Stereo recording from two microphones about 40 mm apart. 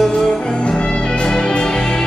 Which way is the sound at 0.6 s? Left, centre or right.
Left.